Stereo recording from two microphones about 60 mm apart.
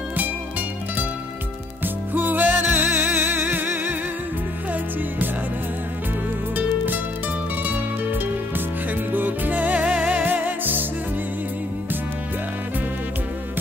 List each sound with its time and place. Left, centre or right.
2.1 s music: right
7.6 s music: right